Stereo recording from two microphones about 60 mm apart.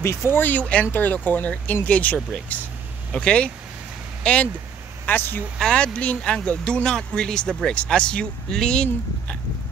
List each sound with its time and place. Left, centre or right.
0.3 s speech: left
5.0 s speech: left
5.6 s speech: centre